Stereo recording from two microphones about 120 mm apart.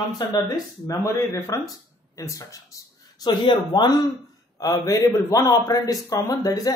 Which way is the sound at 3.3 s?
40° left (ahead or behind).